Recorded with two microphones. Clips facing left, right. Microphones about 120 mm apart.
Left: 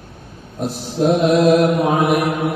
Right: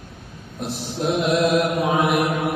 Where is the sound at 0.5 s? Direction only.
40° left (ahead or behind).